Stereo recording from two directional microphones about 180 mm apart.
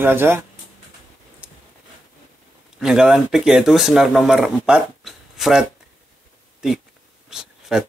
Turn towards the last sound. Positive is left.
turn(degrees=-5)  # may be behind; listen again after turning